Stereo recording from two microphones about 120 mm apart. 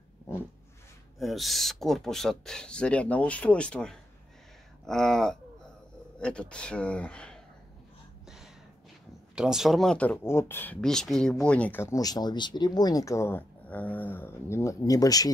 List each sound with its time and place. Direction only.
1.2 s speech: centre (ahead or behind)
9.3 s speech: 5° right (ahead or behind); by 10.8 s 15° left (ahead or behind)
10.8 s speech: 5° left (ahead or behind)
12.0 s speech: 35° left (ahead or behind)